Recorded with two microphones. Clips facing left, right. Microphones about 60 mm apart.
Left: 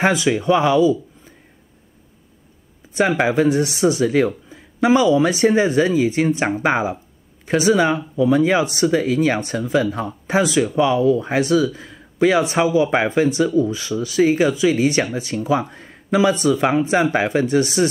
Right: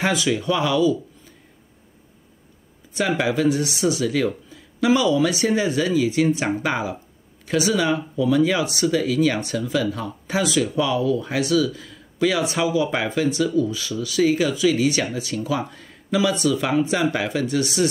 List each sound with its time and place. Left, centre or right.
0.0 s speech: left
3.0 s speech: left